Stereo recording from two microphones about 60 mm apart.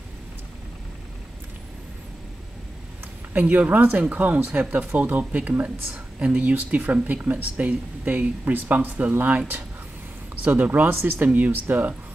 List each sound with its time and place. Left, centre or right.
3.3 s speech: right
10.4 s speech: right
11.2 s speech: right